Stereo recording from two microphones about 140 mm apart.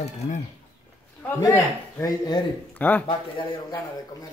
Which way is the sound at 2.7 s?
10° left (ahead or behind).